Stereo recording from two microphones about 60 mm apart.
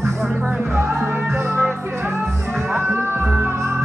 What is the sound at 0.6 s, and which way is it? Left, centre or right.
Music, right.